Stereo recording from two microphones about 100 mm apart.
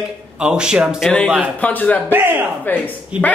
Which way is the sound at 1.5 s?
15° left (ahead or behind).